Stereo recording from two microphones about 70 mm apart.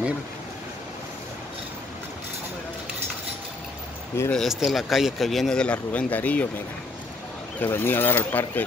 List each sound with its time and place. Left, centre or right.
4.4 s speech: centre
5.6 s speech: centre
7.6 s speech: left